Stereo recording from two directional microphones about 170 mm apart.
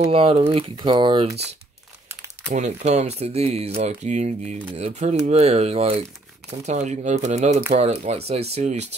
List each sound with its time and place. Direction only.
0.0 s speech: 35° right (ahead or behind)
2.5 s speech: 40° right (ahead or behind)